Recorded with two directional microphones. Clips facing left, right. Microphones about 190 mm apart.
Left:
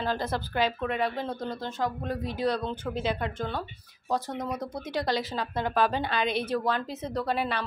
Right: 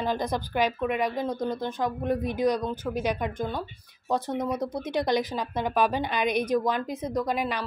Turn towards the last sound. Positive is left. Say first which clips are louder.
# right 1 dB
turn(degrees=-10)  # may be behind; listen again after turning